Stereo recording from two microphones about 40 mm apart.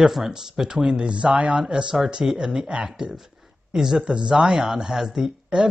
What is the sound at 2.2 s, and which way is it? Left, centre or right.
Speech, centre.